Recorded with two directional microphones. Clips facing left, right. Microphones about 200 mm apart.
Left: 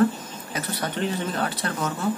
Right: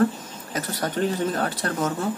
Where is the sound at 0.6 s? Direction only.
45° right (ahead or behind).